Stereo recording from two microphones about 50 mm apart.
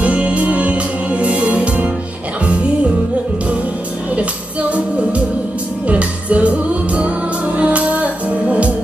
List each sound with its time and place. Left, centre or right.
0.0 s music: right
4.1 s music: right